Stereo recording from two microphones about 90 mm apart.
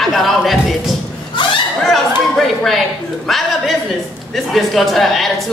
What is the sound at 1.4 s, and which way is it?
Speech, 60° left (ahead or behind).